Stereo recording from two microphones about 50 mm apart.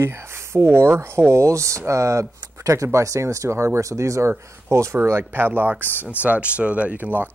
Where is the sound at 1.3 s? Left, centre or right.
Right.